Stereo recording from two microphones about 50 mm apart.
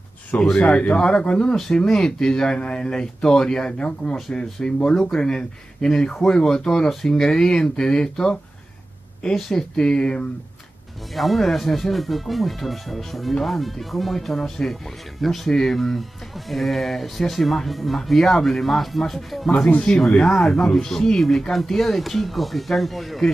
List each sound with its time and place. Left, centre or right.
0.4 s speech: centre
11.1 s speech: centre